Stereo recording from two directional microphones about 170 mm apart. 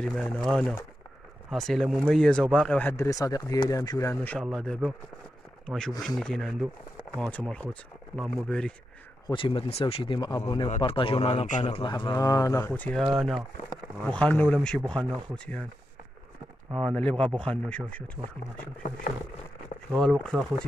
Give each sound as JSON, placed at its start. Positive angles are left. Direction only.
{"t": 0.0, "sound": "speech", "side_deg": 5}
{"t": 9.3, "sound": "speech", "side_deg": 30}
{"t": 16.7, "sound": "speech", "side_deg": 5}
{"t": 20.0, "sound": "speech", "side_deg": 5}